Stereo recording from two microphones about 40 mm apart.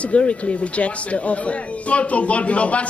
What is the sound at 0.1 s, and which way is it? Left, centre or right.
A man's voice, left.